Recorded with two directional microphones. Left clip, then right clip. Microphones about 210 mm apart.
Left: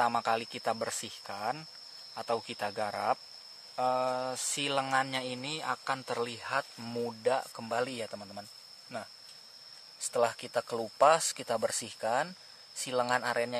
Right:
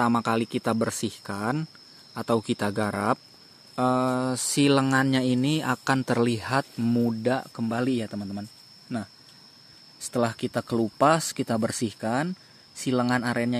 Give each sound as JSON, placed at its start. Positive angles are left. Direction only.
{"t": 0.0, "sound": "speech", "side_deg": -10}
{"t": 6.8, "sound": "speech", "side_deg": -10}